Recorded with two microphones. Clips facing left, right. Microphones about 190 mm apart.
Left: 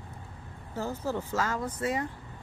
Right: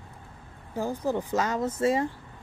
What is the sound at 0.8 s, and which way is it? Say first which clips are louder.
Speech: right 4 dB; 15° right (ahead or behind).